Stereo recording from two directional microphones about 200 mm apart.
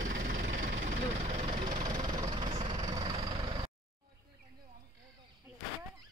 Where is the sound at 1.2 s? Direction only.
35° right (ahead or behind).